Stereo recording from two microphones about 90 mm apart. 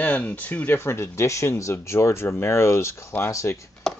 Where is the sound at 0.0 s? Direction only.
15° left (ahead or behind).